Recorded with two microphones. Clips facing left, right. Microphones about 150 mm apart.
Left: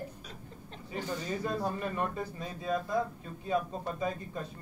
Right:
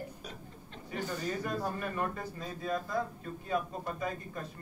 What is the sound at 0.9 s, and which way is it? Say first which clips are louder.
A man's voice: even; 25° left (ahead or behind).